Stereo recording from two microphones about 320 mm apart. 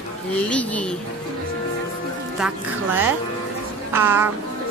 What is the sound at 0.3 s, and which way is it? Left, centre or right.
Speech, centre.